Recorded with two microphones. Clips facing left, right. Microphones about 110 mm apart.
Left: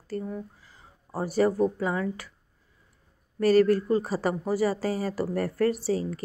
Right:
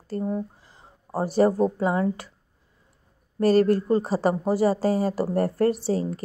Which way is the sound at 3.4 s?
25° right (ahead or behind).